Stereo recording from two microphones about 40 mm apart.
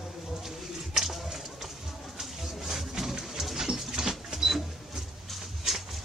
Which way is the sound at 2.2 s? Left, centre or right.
Centre.